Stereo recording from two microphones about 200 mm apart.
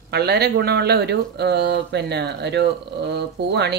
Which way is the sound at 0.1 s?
55° right (ahead or behind).